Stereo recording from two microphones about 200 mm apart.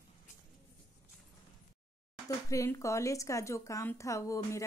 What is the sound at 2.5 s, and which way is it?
A woman's voice, 15° left (ahead or behind).